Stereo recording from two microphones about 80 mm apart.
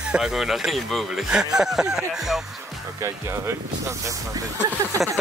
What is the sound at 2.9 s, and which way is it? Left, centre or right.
Speech, right.